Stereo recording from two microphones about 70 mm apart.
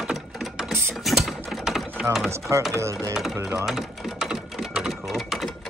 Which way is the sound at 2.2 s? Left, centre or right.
Right.